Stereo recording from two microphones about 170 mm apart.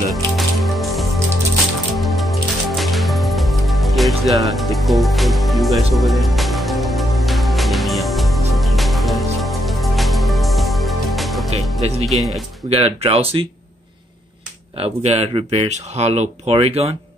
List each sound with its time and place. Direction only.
0.1 s music: centre (ahead or behind)
11.8 s speech: 40° right (ahead or behind)
12.2 s speech: centre (ahead or behind)
12.6 s speech: 35° right (ahead or behind)
14.8 s speech: 35° right (ahead or behind)